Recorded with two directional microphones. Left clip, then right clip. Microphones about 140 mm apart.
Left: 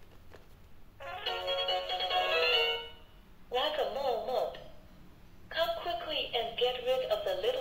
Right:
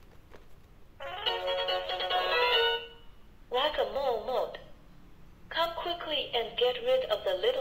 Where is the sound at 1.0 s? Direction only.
30° right (ahead or behind).